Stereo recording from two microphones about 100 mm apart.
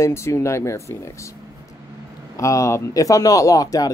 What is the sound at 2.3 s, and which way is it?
Speech, 30° left (ahead or behind).